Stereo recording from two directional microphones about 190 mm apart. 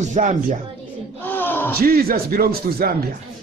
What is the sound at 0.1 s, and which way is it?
Speech, 40° right (ahead or behind).